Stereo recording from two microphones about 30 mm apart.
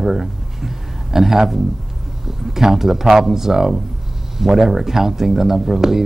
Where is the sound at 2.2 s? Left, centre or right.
Centre.